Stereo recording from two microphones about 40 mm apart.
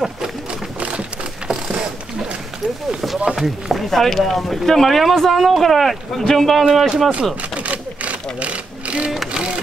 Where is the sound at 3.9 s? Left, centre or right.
Centre.